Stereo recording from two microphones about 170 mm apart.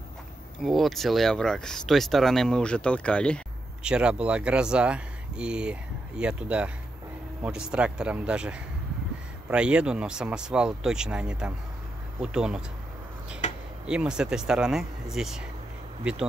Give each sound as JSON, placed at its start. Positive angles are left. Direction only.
{"t": 0.7, "sound": "speech", "side_deg": 0}
{"t": 3.8, "sound": "speech", "side_deg": -5}
{"t": 13.4, "sound": "a sound", "side_deg": 45}
{"t": 13.8, "sound": "speech", "side_deg": -5}